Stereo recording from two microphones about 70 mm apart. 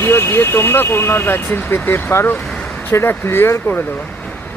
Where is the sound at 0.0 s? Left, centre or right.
Left.